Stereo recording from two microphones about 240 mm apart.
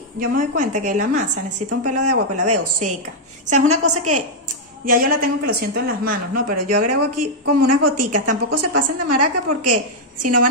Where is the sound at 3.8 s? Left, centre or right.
Right.